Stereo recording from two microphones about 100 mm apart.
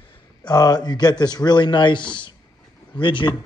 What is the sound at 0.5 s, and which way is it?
Speech, 40° left (ahead or behind).